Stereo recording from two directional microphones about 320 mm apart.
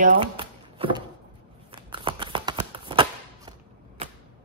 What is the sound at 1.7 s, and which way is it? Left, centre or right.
Shuffling cards, centre.